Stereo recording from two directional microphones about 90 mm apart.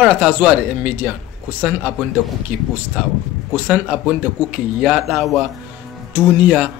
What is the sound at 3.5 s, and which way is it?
Speech, 15° right (ahead or behind).